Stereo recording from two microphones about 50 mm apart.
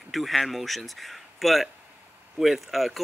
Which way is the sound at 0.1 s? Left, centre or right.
Centre.